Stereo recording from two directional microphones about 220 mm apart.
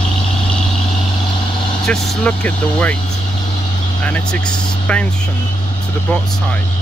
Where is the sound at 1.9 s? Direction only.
5° left (ahead or behind).